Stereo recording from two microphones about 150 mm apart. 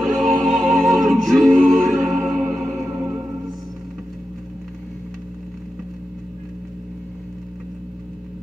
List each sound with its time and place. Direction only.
0.2 s music: centre (ahead or behind)